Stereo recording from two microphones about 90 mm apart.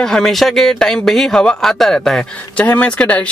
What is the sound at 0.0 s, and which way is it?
Speech, 5° left (ahead or behind).